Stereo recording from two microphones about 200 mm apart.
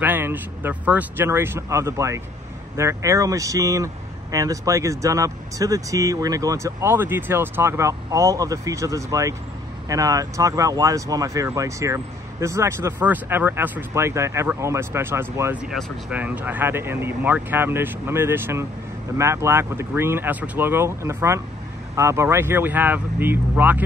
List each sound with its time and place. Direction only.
0.0 s speech: 10° right (ahead or behind)